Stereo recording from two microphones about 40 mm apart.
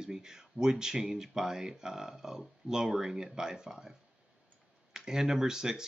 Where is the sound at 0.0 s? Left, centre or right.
Centre.